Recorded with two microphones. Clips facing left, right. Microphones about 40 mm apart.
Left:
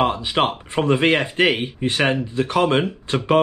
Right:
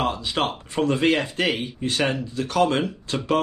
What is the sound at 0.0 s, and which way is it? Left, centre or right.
Speech, left.